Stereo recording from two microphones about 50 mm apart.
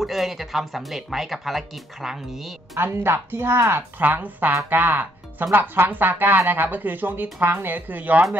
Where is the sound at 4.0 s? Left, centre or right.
Right.